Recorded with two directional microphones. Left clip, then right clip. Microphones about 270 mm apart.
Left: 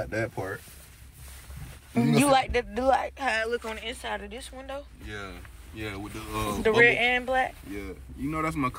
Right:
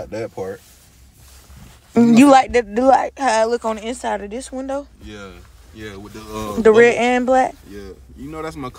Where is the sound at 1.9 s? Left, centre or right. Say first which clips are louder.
Right 11 dB; right.